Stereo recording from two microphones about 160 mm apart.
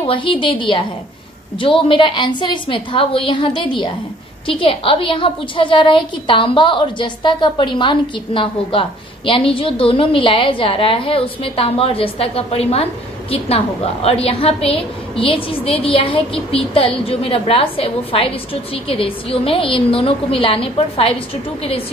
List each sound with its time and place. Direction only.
0.0 s a woman's voice: 35° left (ahead or behind)